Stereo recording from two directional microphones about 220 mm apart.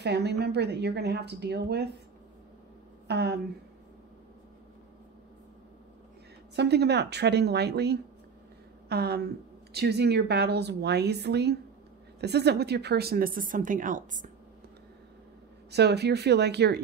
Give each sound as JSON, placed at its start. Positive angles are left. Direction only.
{"t": 0.0, "sound": "a woman's voice", "side_deg": -50}
{"t": 3.1, "sound": "speech", "side_deg": -50}
{"t": 6.5, "sound": "a woman's voice", "side_deg": -50}
{"t": 15.7, "sound": "a woman's voice", "side_deg": -50}